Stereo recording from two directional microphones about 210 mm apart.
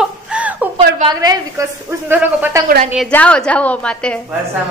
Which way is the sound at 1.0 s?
20° right (ahead or behind).